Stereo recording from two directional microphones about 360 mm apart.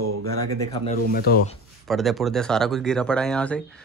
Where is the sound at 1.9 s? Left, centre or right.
Centre.